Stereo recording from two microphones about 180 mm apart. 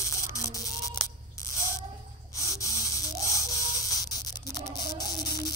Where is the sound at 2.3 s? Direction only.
20° left (ahead or behind).